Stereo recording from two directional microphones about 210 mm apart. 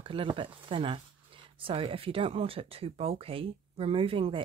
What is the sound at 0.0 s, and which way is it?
Speech, 25° right (ahead or behind).